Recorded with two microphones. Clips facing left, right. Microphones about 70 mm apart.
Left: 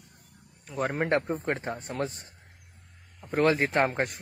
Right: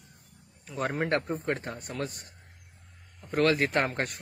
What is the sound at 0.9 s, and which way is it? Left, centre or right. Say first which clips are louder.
Speech: left 2 dB; centre.